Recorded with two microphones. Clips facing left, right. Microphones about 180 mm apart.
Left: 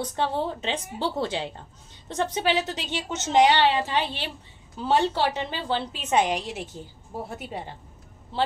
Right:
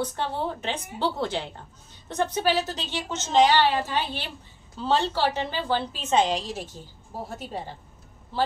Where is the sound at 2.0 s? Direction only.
20° left (ahead or behind).